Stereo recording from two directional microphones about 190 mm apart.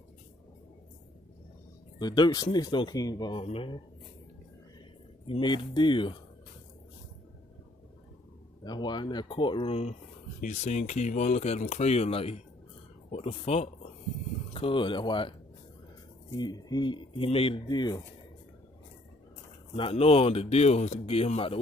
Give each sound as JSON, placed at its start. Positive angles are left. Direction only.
{"t": 2.0, "sound": "speech", "side_deg": 20}
{"t": 5.2, "sound": "speech", "side_deg": 25}
{"t": 8.6, "sound": "speech", "side_deg": 25}
{"t": 16.3, "sound": "speech", "side_deg": 20}
{"t": 19.7, "sound": "speech", "side_deg": 30}